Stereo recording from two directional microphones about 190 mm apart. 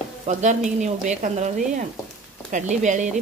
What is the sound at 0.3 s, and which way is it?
Speech, 40° right (ahead or behind).